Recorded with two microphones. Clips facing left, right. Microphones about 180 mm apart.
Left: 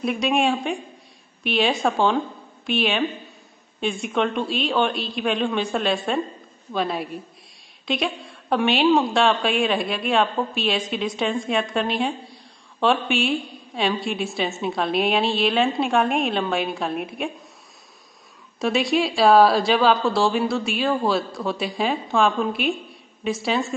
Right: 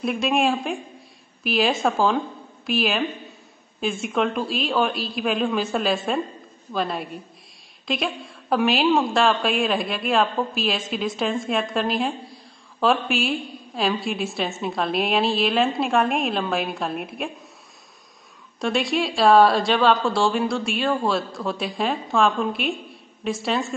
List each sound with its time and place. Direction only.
0.0 s a woman's voice: centre (ahead or behind)
18.6 s a woman's voice: centre (ahead or behind)